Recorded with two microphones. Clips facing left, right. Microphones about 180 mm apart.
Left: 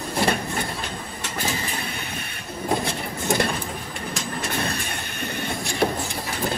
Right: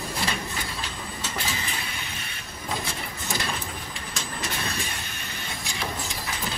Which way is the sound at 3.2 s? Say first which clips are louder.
Left 9 dB; 60° left (ahead or behind).